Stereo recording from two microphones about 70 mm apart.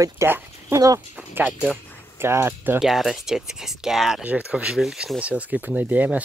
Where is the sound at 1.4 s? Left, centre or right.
Centre.